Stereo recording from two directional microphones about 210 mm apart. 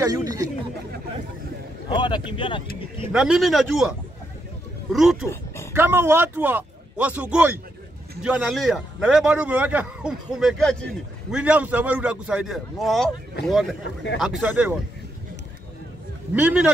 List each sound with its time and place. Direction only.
0.0 s speech: 15° right (ahead or behind)
1.9 s speech: 20° left (ahead or behind)
3.0 s a man's voice: 5° right (ahead or behind)
5.8 s a man's voice: 10° right (ahead or behind)
16.3 s a man's voice: 5° right (ahead or behind)